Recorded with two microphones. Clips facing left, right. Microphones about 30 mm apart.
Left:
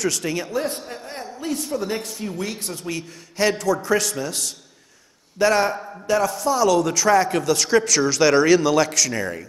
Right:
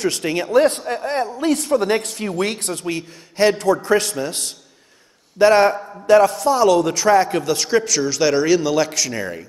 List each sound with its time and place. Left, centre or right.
0.0 s a man's voice: right
0.5 s a man's voice: right
3.5 s a man's voice: right
7.4 s a man's voice: right
7.7 s a man's voice: centre
8.9 s a man's voice: centre